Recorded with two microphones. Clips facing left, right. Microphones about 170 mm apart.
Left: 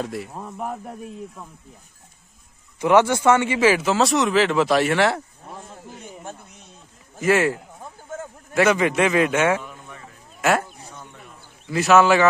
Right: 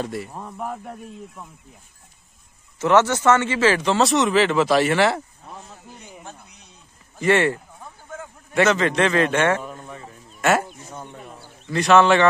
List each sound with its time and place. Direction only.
0.0 s speech: centre (ahead or behind)
2.8 s speech: 15° left (ahead or behind)
5.6 s a sound: 50° left (ahead or behind)
7.2 s a man's voice: 5° left (ahead or behind)
9.6 s a sound: 35° right (ahead or behind)
10.9 s chop: 35° right (ahead or behind)
11.6 s speech: 5° left (ahead or behind)